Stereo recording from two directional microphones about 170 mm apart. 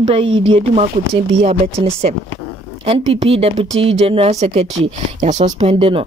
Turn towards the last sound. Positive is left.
turn(degrees=-35)  # may be behind; listen again after turning